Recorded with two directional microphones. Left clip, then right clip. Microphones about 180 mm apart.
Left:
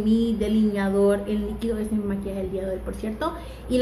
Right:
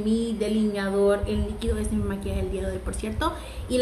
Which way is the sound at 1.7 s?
15° right (ahead or behind).